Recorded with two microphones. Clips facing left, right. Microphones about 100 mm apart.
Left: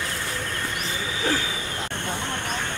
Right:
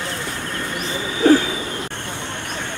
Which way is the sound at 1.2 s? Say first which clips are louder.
Right 13 dB; 60° right (ahead or behind).